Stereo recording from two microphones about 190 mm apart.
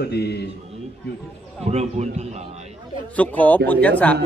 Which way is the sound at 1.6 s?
35° right (ahead or behind).